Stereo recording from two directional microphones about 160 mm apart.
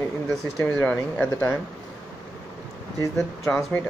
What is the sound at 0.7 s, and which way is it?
Speech, 5° left (ahead or behind).